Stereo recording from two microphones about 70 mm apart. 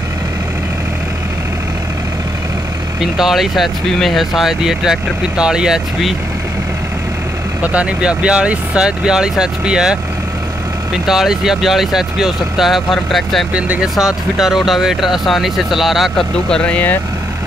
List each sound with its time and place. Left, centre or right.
3.0 s speech: centre
7.6 s speech: centre
13.5 s speech: centre
13.9 s speech: centre
16.4 s speech: centre